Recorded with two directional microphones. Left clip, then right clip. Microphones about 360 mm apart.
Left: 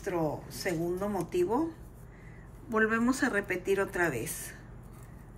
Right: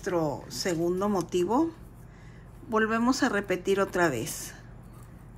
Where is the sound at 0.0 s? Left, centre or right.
Centre.